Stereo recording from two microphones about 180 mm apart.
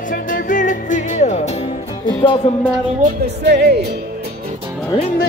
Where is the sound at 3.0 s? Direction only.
65° right (ahead or behind).